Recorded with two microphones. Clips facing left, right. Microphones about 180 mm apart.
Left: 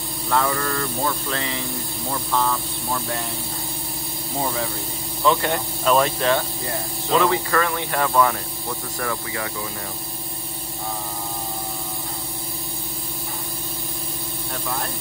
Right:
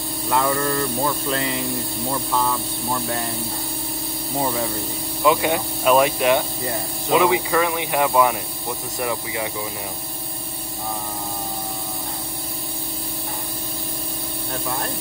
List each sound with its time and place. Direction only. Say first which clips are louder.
0.3 s speech: right 1 dB; 20° right (ahead or behind)
5.2 s speech: right 2 dB; 10° right (ahead or behind)